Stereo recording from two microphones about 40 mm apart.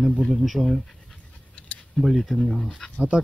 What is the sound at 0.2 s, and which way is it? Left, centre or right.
Speech, centre.